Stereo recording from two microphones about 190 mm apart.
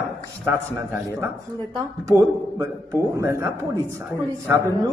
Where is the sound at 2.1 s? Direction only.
15° right (ahead or behind).